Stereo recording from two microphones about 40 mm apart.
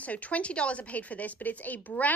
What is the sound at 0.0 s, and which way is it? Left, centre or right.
A woman's voice, left.